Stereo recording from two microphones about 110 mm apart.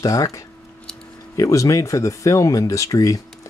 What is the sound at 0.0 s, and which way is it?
Speech, 30° left (ahead or behind).